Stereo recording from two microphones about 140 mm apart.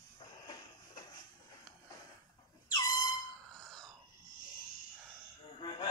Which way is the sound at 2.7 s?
30° left (ahead or behind).